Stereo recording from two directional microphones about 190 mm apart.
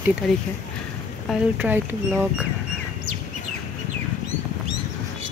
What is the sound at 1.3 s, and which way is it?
Speech, 10° right (ahead or behind).